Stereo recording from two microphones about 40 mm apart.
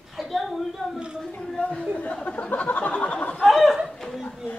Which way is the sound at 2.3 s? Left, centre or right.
Left.